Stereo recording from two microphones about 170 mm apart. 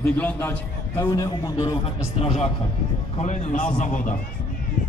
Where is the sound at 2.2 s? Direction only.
40° left (ahead or behind).